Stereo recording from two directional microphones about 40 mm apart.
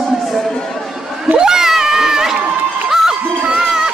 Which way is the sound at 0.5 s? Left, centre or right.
Centre.